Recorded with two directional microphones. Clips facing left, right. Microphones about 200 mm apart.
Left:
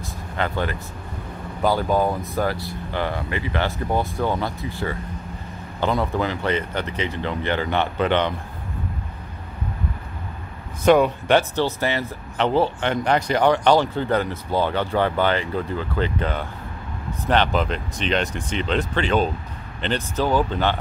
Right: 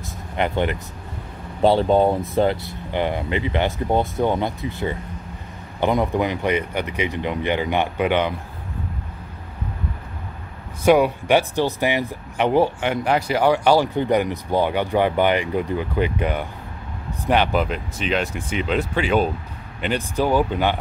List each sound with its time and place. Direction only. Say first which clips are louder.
0.4 s speech: right 3 dB; 20° right (ahead or behind)
10.8 s speech: even; 10° right (ahead or behind)